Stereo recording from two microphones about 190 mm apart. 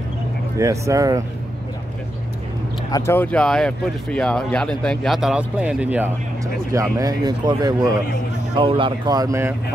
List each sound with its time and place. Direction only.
0.6 s speech: 15° right (ahead or behind)
2.9 s speech: 10° left (ahead or behind); by 9.6 s 15° right (ahead or behind)